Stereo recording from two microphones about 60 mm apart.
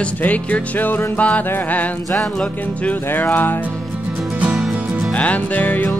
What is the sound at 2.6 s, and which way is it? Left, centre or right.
Music, left.